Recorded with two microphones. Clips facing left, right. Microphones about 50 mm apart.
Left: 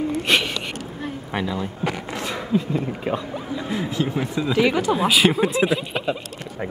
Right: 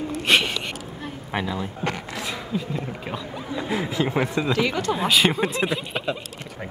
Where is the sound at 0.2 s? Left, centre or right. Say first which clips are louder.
Right 4 dB; centre.